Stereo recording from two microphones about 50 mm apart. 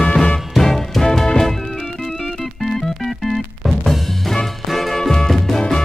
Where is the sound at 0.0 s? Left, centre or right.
Centre.